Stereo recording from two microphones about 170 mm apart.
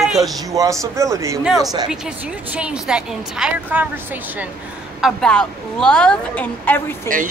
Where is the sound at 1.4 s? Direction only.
Centre (ahead or behind).